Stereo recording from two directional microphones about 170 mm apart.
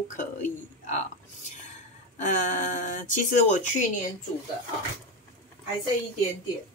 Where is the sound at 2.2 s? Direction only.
50° left (ahead or behind).